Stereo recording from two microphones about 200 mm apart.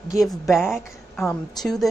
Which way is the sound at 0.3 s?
Centre (ahead or behind).